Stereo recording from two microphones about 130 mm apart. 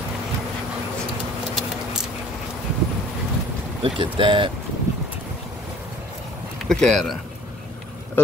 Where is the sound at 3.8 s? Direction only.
40° right (ahead or behind).